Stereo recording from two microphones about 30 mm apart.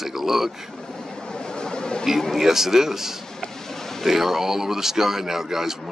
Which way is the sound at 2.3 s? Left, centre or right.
Centre.